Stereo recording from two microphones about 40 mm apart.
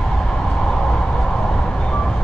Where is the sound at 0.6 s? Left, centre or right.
Centre.